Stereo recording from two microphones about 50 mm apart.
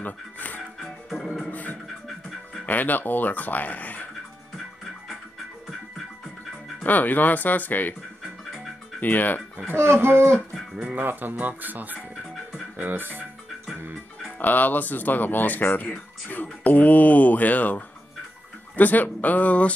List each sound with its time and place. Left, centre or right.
0.0 s speech: left
0.7 s music: centre
1.5 s beatboxing: left
2.6 s speech: left
6.8 s speech: left
9.0 s speech: left
9.9 s music: right
11.0 s speech: right
12.7 s music: right
14.4 s speech: left